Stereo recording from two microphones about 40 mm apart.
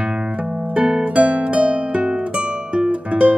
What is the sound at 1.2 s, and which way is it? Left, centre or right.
Harp, right.